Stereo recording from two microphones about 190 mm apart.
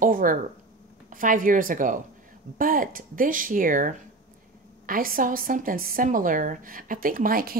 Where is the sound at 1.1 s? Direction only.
45° right (ahead or behind).